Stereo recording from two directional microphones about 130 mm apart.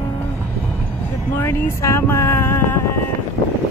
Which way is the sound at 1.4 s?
20° left (ahead or behind).